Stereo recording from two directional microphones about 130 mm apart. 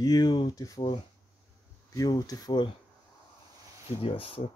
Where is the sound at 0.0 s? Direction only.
30° left (ahead or behind).